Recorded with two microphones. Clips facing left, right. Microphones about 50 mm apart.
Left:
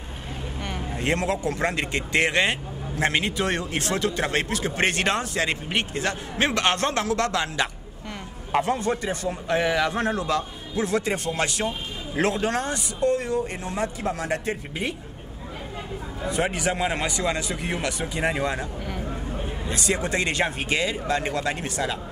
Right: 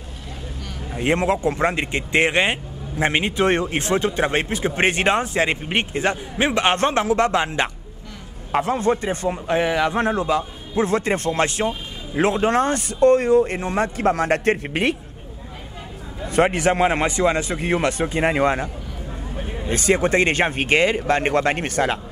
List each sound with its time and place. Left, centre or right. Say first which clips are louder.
0.9 s speech: right 6 dB; right
6.3 s speech: right 2 dB; centre
9.5 s speech: right 2 dB; centre
10.8 s a man's voice: right 5 dB; right
12.6 s speech: right 8 dB; right
16.3 s a man's voice: right 7 dB; right
19.7 s speech: right 8 dB; right